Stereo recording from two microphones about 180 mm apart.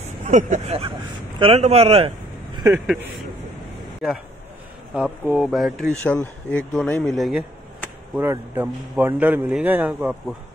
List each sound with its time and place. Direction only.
0.0 s speech: 45° right (ahead or behind)
4.9 s speech: 5° right (ahead or behind)
8.2 s a man's voice: 10° right (ahead or behind)